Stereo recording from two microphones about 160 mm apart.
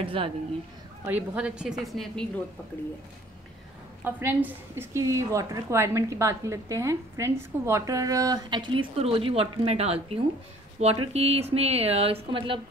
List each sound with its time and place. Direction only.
0.0 s a woman's voice: 35° right (ahead or behind)
1.0 s a woman's voice: 10° right (ahead or behind)
4.0 s a woman's voice: 15° right (ahead or behind); by 12.5 s 35° right (ahead or behind)